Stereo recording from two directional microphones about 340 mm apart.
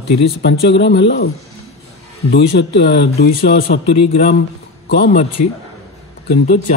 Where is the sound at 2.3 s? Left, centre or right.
Left.